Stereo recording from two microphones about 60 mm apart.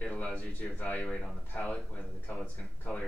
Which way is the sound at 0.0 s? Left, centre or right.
Centre.